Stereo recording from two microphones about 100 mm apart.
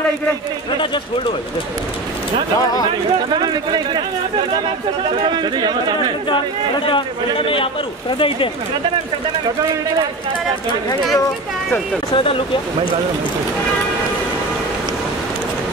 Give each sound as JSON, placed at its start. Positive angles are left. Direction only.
{"t": 3.3, "sound": "speech", "side_deg": -45}
{"t": 5.2, "sound": "speech", "side_deg": -50}
{"t": 6.9, "sound": "a man's voice", "side_deg": 60}